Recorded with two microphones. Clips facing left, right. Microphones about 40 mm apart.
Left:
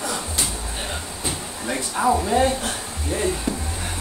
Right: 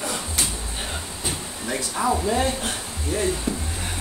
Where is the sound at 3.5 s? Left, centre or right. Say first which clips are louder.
Left 1 dB; left.